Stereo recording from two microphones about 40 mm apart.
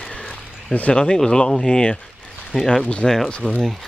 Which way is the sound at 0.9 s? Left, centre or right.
Left.